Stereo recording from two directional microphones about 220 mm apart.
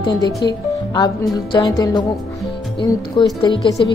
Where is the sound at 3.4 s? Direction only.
20° left (ahead or behind).